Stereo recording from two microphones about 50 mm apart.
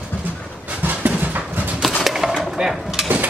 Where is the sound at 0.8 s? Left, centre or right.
Right.